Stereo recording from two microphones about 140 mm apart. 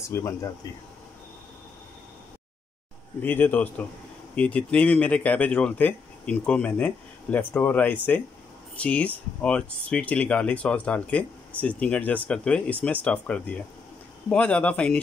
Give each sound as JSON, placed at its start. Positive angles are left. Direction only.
{"t": 0.0, "sound": "speech", "side_deg": 20}
{"t": 3.2, "sound": "speech", "side_deg": 15}